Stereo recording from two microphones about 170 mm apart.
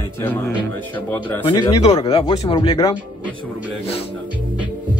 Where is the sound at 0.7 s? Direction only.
10° left (ahead or behind).